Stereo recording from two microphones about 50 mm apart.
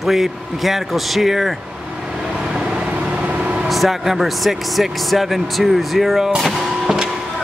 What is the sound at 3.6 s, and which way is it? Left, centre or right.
Speech, centre.